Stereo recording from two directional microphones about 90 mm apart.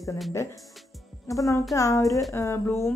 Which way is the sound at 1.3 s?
40° left (ahead or behind).